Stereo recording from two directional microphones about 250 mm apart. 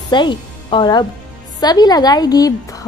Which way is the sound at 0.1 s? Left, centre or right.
Centre.